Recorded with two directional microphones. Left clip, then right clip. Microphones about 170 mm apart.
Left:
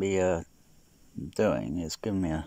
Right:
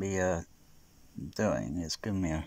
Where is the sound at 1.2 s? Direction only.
15° left (ahead or behind).